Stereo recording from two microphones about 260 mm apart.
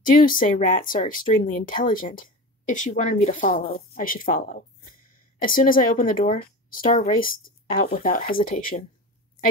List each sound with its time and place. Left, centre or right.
0.0 s speech: left